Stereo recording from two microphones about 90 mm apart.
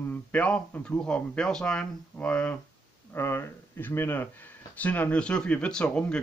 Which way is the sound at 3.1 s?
25° left (ahead or behind).